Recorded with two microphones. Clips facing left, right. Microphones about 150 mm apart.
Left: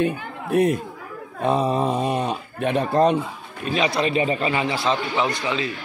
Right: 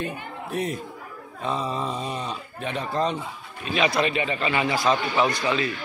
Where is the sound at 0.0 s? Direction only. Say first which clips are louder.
Left 8 dB; 55° left (ahead or behind).